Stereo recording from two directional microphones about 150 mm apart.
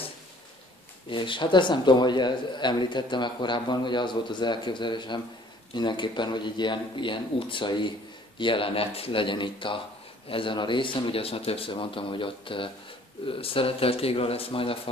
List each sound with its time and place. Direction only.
1.1 s speech: 35° left (ahead or behind)